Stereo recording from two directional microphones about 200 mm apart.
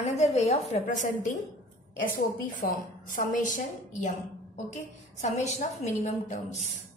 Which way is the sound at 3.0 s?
40° left (ahead or behind).